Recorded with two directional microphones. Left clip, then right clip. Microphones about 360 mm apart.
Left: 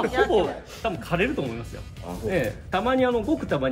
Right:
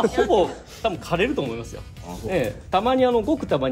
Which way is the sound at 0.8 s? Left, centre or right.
Right.